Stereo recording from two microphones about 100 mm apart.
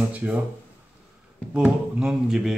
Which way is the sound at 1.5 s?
10° right (ahead or behind).